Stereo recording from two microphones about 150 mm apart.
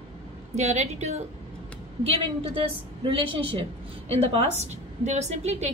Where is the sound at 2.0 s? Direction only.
35° right (ahead or behind).